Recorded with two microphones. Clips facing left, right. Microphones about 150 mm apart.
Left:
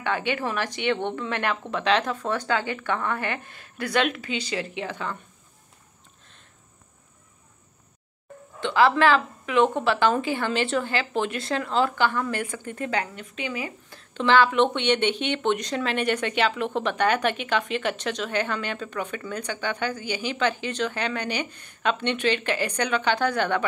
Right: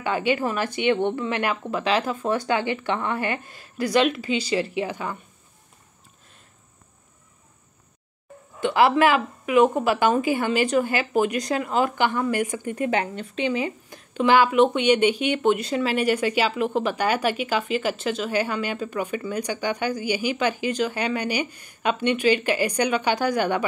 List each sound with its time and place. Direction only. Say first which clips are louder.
0.0 s speech: right 3 dB; 10° right (ahead or behind)
4.2 s speech: right 6 dB; 35° right (ahead or behind)
4.6 s speech: right 5 dB; 10° right (ahead or behind)
8.6 s speech: right 1 dB; 15° right (ahead or behind)
13.0 s speech: right 7 dB; 30° right (ahead or behind); by 23.6 s 10° right (ahead or behind)